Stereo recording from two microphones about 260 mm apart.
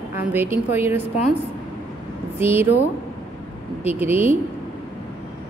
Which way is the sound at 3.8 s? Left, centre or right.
Centre.